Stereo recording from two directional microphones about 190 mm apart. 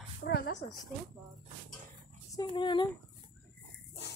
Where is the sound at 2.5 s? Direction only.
25° left (ahead or behind).